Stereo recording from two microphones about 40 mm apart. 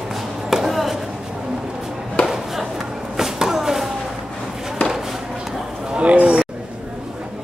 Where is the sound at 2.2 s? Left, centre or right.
Left.